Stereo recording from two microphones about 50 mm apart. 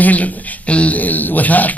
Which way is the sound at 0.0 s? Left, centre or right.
Left.